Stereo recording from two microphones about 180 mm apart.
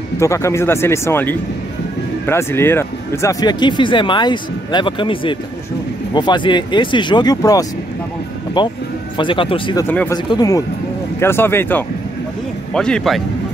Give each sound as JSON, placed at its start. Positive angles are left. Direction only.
{"t": 0.2, "sound": "speech", "side_deg": 15}
{"t": 9.8, "sound": "speech", "side_deg": 10}